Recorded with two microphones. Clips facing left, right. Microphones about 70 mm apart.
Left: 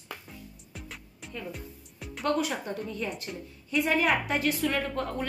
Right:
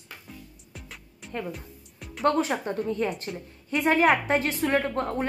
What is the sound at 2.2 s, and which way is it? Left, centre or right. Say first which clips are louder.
Speech: right 5 dB; right.